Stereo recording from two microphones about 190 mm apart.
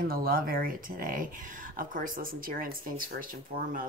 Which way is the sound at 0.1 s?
50° right (ahead or behind).